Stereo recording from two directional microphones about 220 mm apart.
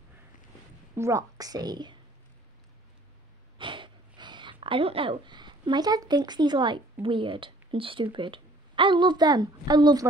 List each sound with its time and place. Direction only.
0.9 s a woman's voice: 15° right (ahead or behind)
3.5 s speech: 20° right (ahead or behind)